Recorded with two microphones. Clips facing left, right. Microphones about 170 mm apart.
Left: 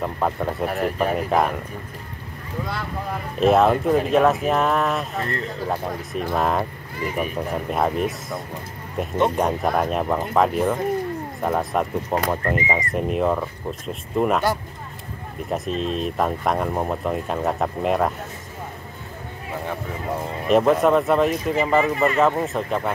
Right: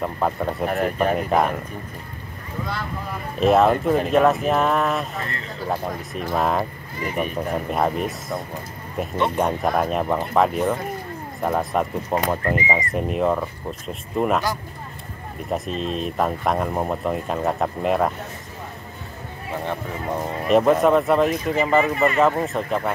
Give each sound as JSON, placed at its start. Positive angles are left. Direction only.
{"t": 0.0, "sound": "speech", "side_deg": 0}
{"t": 3.3, "sound": "speech", "side_deg": 0}
{"t": 5.1, "sound": "speech", "side_deg": 40}
{"t": 5.7, "sound": "speech", "side_deg": 0}
{"t": 15.5, "sound": "speech", "side_deg": 0}
{"t": 20.4, "sound": "speech", "side_deg": 0}